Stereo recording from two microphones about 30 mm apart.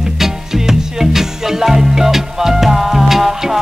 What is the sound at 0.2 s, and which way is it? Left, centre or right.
Music, centre.